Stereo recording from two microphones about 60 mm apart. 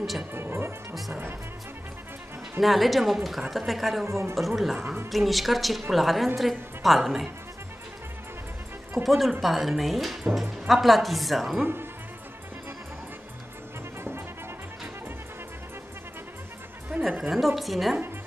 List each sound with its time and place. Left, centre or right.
0.3 s music: right
2.6 s a woman's voice: centre
4.0 s speech: right
4.4 s a woman's voice: centre
8.9 s a woman's voice: centre
11.6 s speech: right
17.2 s a woman's voice: centre